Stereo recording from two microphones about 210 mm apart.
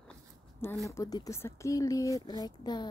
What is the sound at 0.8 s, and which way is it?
Speech, 15° left (ahead or behind).